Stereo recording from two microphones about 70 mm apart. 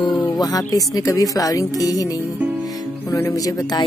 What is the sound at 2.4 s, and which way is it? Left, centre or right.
Music, right.